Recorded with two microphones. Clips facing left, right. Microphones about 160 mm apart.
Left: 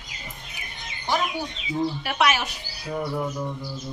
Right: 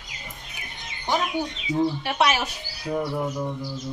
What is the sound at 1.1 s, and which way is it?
Bird, 20° right (ahead or behind).